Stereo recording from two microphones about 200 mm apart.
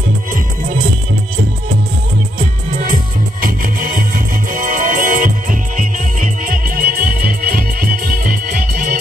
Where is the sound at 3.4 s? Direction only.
45° right (ahead or behind).